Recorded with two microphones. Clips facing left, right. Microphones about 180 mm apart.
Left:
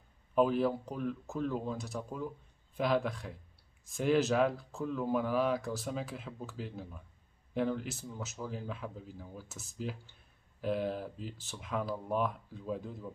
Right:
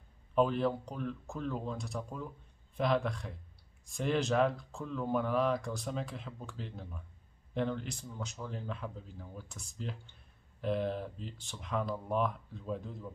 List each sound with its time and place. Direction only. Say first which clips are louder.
0.3 s speech: left 1 dB; 5° left (ahead or behind)